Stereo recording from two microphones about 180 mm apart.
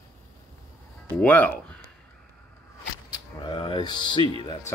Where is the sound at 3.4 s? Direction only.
25° left (ahead or behind).